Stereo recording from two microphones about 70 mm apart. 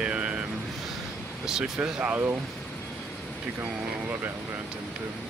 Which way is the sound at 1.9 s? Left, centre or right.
Centre.